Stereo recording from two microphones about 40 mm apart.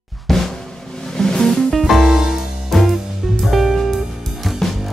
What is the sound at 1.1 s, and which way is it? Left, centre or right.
Music, centre.